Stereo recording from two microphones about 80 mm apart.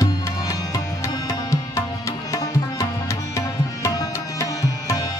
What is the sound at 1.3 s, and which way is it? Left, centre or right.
Music, left.